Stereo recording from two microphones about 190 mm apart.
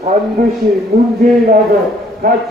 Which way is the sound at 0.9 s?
60° right (ahead or behind).